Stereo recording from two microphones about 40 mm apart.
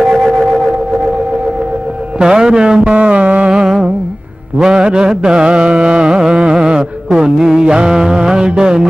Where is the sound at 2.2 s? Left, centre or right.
Centre.